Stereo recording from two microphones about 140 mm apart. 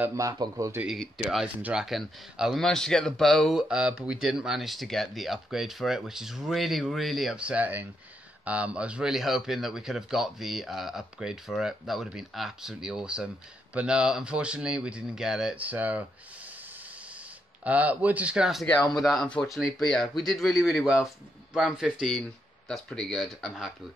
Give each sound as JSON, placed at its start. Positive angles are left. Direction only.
{"t": 0.0, "sound": "a man's voice", "side_deg": -20}
{"t": 0.8, "sound": "speech", "side_deg": -5}
{"t": 17.6, "sound": "speech", "side_deg": -10}
{"t": 18.7, "sound": "speech", "side_deg": 10}